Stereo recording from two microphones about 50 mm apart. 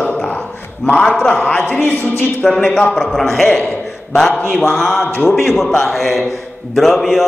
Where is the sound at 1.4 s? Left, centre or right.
Left.